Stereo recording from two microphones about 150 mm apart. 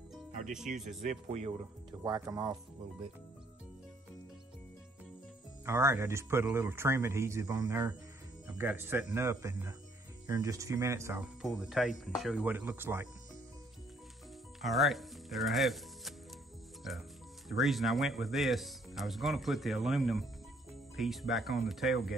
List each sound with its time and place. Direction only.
0.7 s speech: centre (ahead or behind)
1.0 s speech: 45° right (ahead or behind)
1.6 s speech: 25° right (ahead or behind)
5.7 s speech: 15° right (ahead or behind)
11.4 s speech: centre (ahead or behind)
14.6 s speech: centre (ahead or behind)
17.5 s speech: centre (ahead or behind)